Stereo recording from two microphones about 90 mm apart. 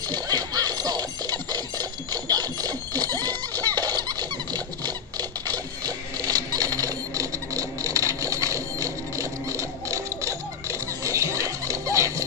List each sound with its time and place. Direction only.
0.1 s music: 50° right (ahead or behind)
3.7 s squeak: 50° right (ahead or behind)
5.5 s sewing machine: 45° right (ahead or behind)